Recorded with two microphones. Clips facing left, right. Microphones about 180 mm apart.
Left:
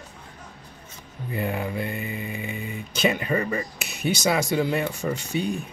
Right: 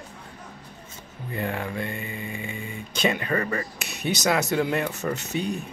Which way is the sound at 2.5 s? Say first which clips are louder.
Left 2 dB; centre (ahead or behind).